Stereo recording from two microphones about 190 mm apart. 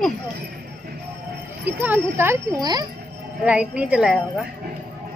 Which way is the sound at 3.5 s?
5° right (ahead or behind).